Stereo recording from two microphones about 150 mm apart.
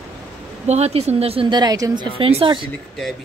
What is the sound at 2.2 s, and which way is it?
Speech, 40° right (ahead or behind).